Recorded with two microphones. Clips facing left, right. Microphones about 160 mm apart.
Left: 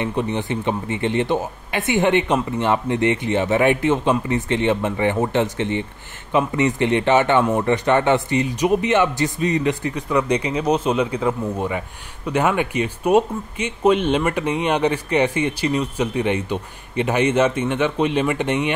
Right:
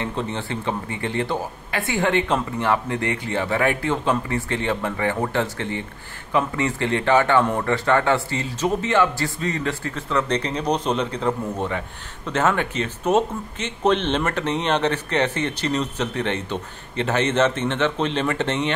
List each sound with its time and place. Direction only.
0.0 s speech: 15° left (ahead or behind)